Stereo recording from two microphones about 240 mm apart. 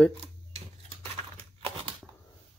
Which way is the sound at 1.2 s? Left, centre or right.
Right.